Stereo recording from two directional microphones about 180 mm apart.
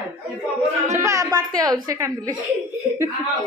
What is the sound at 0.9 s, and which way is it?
Speech, 15° right (ahead or behind).